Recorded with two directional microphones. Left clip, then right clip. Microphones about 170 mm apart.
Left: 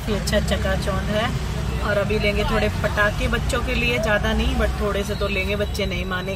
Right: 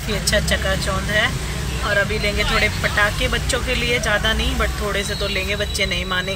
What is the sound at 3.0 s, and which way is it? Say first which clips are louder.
Speech: right 2 dB; 5° left (ahead or behind).